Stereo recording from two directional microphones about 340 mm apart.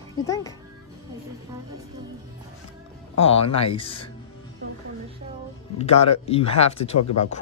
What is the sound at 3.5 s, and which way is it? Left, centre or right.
Speech, centre.